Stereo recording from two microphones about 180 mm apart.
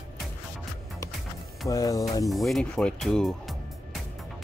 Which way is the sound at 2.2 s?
Centre (ahead or behind).